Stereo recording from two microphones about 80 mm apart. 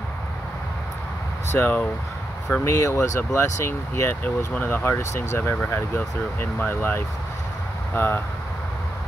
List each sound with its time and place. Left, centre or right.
1.5 s speech: left